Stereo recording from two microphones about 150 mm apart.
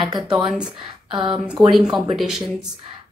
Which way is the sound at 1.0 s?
35° right (ahead or behind).